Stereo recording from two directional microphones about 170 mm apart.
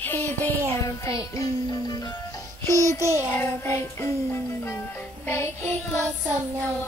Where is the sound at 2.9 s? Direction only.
15° right (ahead or behind).